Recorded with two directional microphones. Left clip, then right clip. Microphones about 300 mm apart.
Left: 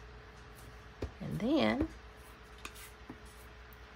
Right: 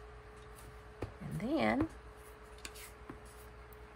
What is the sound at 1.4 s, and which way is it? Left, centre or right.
Speech, centre.